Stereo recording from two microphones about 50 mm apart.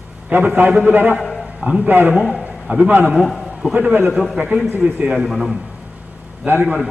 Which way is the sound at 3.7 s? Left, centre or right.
Right.